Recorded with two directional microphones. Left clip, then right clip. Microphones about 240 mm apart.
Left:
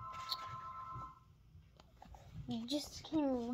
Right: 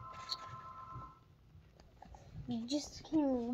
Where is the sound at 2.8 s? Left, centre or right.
Left.